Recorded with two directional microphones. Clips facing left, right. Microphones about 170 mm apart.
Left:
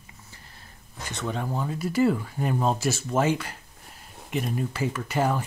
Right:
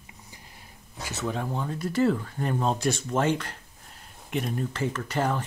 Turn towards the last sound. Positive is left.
turn(degrees=10)  # may be behind; listen again after turning